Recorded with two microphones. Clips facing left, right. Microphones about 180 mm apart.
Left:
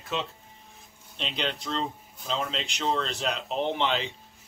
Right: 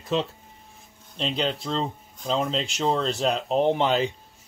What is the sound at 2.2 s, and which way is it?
Speech, 35° right (ahead or behind).